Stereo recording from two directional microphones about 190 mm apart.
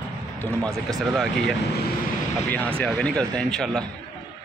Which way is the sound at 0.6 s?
15° right (ahead or behind).